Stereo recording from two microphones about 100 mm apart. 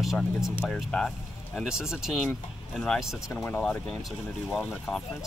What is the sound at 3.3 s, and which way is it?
Speech, 20° left (ahead or behind).